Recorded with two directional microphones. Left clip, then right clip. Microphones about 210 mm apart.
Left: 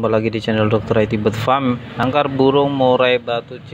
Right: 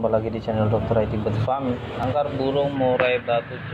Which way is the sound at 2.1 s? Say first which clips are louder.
Left 8 dB; 45° left (ahead or behind).